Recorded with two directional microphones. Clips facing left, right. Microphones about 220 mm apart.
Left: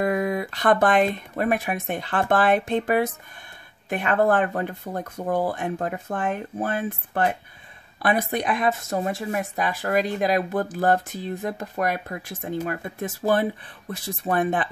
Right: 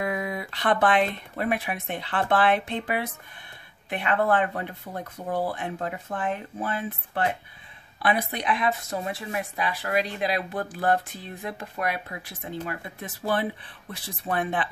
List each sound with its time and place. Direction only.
0.0 s speech: 45° left (ahead or behind)